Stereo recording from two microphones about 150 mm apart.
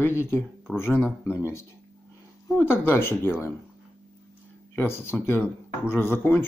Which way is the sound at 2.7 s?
15° left (ahead or behind).